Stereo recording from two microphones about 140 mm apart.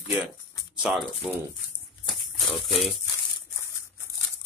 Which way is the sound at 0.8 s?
Centre (ahead or behind).